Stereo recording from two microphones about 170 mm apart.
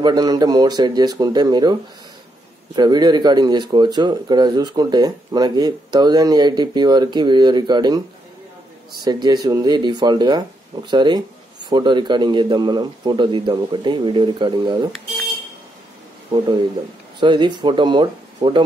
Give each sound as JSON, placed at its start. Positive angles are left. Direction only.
{"t": 0.0, "sound": "speech", "side_deg": -25}
{"t": 9.0, "sound": "speech", "side_deg": -25}
{"t": 17.2, "sound": "speech", "side_deg": -25}